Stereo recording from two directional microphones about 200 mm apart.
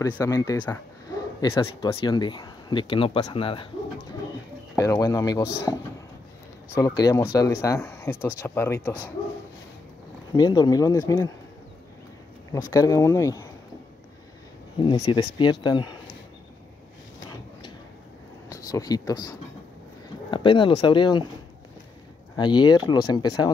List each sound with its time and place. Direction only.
0.0 s speech: 15° left (ahead or behind)
4.7 s speech: 20° left (ahead or behind)
10.3 s speech: 20° left (ahead or behind)
12.5 s speech: 15° left (ahead or behind)
14.8 s speech: 20° left (ahead or behind)
18.5 s speech: 15° left (ahead or behind)
22.3 s speech: 20° left (ahead or behind)